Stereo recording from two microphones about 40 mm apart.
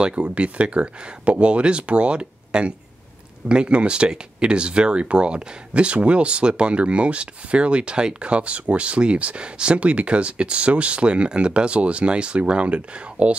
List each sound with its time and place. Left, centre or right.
0.0 s speech: right